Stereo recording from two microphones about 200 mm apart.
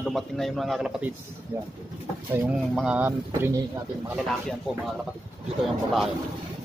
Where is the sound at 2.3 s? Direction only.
5° right (ahead or behind).